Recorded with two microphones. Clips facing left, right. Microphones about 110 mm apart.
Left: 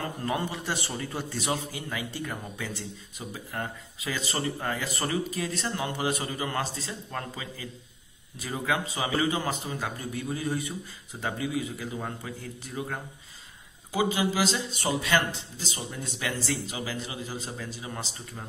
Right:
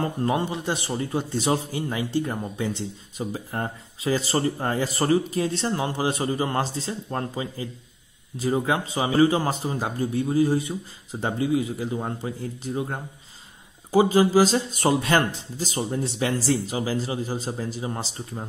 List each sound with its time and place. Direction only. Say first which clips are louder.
0.0 s a man's voice: right 6 dB; 30° right (ahead or behind)
13.9 s a man's voice: right 9 dB; 40° right (ahead or behind)